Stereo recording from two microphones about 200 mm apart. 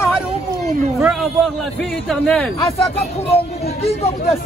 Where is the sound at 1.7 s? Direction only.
5° left (ahead or behind).